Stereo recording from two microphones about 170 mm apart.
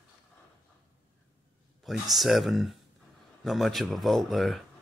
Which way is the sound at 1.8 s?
Centre (ahead or behind).